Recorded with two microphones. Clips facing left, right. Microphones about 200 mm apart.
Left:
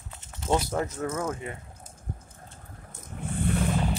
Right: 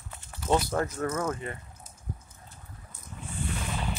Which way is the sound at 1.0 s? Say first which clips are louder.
Even; 5° left (ahead or behind).